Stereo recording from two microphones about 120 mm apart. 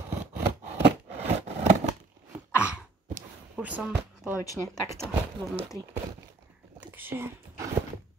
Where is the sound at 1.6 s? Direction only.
75° right (ahead or behind).